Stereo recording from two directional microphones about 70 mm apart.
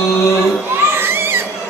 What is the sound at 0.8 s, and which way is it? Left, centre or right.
Crowd, right.